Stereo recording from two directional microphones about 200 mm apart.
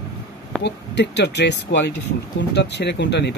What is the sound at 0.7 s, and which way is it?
Speech, 60° left (ahead or behind).